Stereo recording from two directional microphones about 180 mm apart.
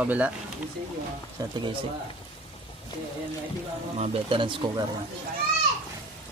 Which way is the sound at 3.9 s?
35° right (ahead or behind).